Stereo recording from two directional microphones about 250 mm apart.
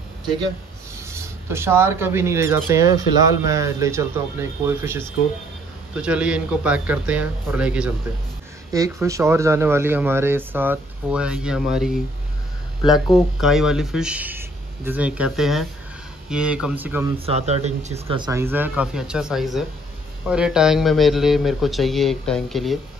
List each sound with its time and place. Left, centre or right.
1.0 s a man's voice: centre
12.8 s speech: centre
13.4 s a man's voice: centre
17.8 s a man's voice: right; by 22.8 s centre